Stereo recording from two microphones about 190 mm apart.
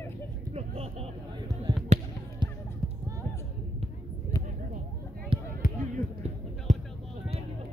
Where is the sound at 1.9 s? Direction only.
40° right (ahead or behind).